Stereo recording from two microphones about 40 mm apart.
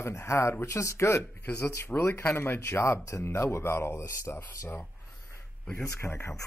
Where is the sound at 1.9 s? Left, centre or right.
Left.